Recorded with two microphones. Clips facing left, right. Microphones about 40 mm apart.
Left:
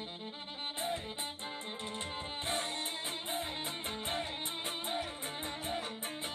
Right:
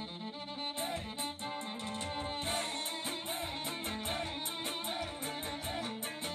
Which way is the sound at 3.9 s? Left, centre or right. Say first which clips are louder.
Left 1 dB; centre.